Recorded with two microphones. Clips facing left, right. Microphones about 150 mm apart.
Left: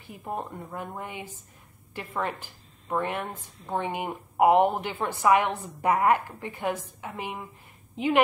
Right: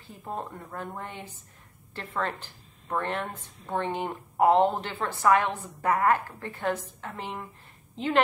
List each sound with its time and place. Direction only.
0.0 s speech: 15° left (ahead or behind)
3.8 s a woman's voice: 15° left (ahead or behind)